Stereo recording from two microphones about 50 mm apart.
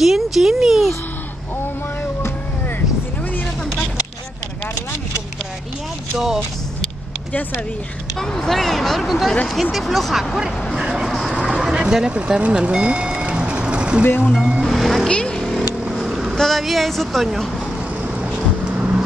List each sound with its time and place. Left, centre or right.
0.0 s a sound: centre
6.1 s speech: centre
8.2 s speech: centre
11.2 s a sound: centre
11.6 s vehicle: centre
14.2 s speech: centre
14.6 s music: centre
15.0 s vehicle: centre
15.3 s vehicle: centre
16.3 s speech: centre
18.0 s vehicle: right